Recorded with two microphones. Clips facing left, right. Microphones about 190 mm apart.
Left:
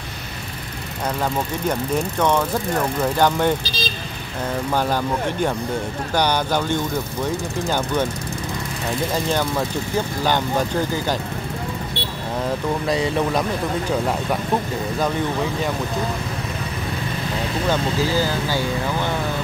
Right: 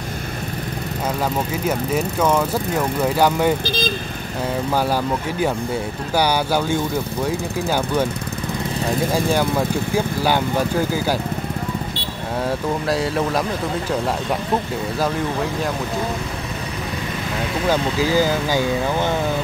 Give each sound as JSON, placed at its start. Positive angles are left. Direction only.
{"t": 1.7, "sound": "speech", "side_deg": -5}
{"t": 3.6, "sound": "speech", "side_deg": -55}
{"t": 4.7, "sound": "speech", "side_deg": -10}
{"t": 9.1, "sound": "speech", "side_deg": -10}
{"t": 12.8, "sound": "speech", "side_deg": 0}
{"t": 15.0, "sound": "speech", "side_deg": 0}
{"t": 17.6, "sound": "speech", "side_deg": -15}